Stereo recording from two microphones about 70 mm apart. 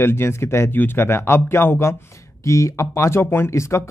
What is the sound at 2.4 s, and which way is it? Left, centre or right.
Speech, left.